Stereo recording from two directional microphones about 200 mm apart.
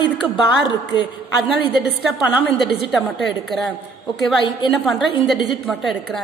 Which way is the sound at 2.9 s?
Centre (ahead or behind).